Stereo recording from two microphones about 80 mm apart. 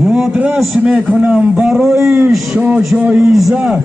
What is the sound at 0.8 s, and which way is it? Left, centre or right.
Speech, centre.